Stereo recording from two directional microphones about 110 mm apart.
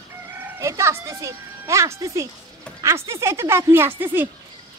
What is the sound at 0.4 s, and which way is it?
Speech, 25° right (ahead or behind).